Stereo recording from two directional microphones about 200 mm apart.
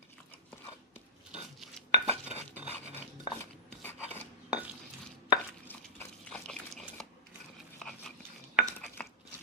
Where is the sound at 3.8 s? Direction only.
10° left (ahead or behind).